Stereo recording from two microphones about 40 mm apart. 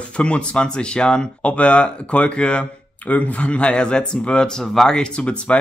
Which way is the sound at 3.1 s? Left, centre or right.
Left.